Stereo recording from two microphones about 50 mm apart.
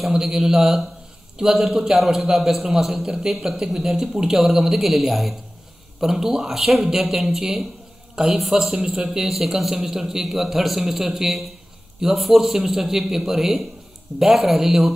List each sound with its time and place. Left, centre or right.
0.0 s a man's voice: centre